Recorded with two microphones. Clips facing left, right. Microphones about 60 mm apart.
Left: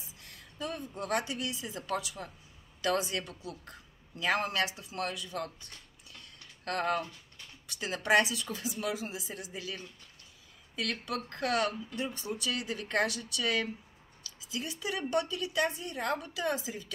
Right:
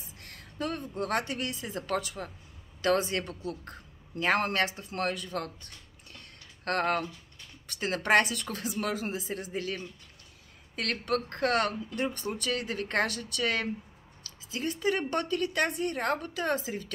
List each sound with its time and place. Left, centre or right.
0.2 s a woman's voice: right
10.8 s speech: right